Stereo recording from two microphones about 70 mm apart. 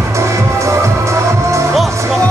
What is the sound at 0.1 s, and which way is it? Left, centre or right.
Music, right.